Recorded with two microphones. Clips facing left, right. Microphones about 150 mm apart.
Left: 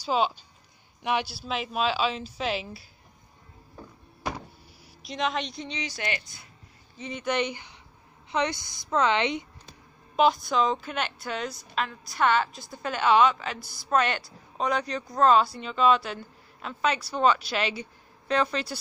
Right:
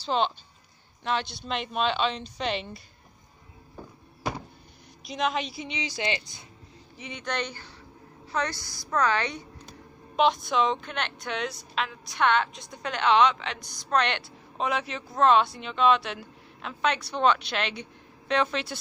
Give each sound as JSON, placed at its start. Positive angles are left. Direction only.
{"t": 0.0, "sound": "a woman's voice", "side_deg": 5}
{"t": 5.0, "sound": "a woman's voice", "side_deg": 0}
{"t": 5.7, "sound": "speech", "side_deg": -15}
{"t": 7.0, "sound": "a woman's voice", "side_deg": 0}
{"t": 7.2, "sound": "a woman's voice", "side_deg": 10}
{"t": 10.1, "sound": "a woman's voice", "side_deg": 0}